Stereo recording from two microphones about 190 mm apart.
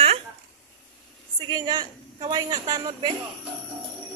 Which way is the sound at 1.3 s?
20° right (ahead or behind).